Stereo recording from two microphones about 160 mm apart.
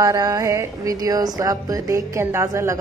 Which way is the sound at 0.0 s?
20° right (ahead or behind).